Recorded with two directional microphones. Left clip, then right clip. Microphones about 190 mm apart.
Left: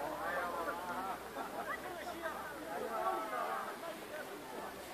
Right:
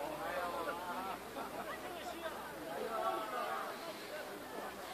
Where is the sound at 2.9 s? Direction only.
45° right (ahead or behind).